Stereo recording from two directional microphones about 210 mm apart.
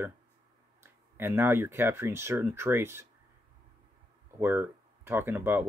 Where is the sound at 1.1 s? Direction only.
10° right (ahead or behind).